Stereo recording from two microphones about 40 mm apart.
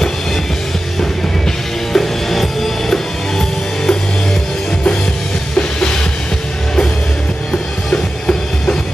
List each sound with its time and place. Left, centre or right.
1.9 s music: centre
5.6 s music: centre
7.9 s music: left